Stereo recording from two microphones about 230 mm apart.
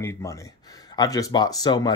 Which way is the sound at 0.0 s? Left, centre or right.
Centre.